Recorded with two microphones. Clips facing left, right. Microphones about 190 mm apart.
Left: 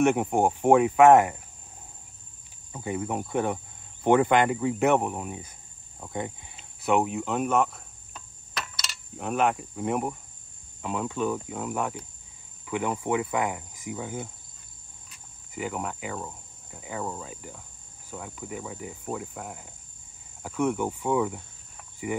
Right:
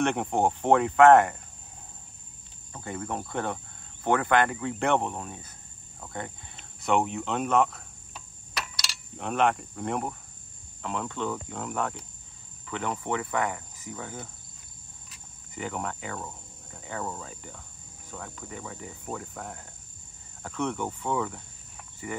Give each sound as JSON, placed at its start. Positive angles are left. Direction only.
{"t": 0.0, "sound": "cricket", "side_deg": 10}
{"t": 2.7, "sound": "cricket", "side_deg": 10}
{"t": 6.8, "sound": "cricket", "side_deg": 5}